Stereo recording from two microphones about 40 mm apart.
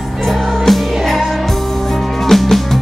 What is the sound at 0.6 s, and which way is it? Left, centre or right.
Music, centre.